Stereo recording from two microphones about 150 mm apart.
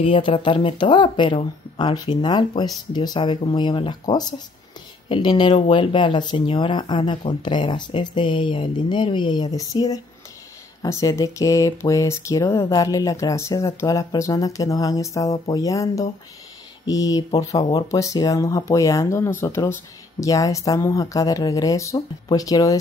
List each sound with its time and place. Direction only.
0.0 s speech: 40° left (ahead or behind)
10.8 s speech: 25° left (ahead or behind)